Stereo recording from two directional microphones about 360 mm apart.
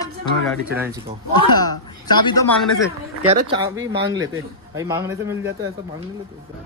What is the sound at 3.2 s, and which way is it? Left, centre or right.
A man's voice, centre.